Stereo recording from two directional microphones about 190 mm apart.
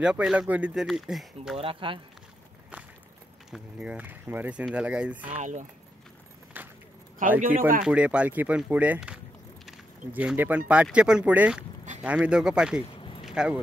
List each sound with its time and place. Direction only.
0.0 s speech: 5° right (ahead or behind)
1.6 s speech: 25° right (ahead or behind)
3.5 s speech: 5° right (ahead or behind)
5.3 s speech: 40° right (ahead or behind)
6.5 s a sound: 10° right (ahead or behind)
7.2 s speech: 45° right (ahead or behind)
7.8 s speech: 5° right (ahead or behind)
9.7 s keys jangling: 5° right (ahead or behind)
10.7 s speech: 5° right (ahead or behind)
12.9 s a sound: 25° left (ahead or behind)
13.2 s a sound: 5° right (ahead or behind)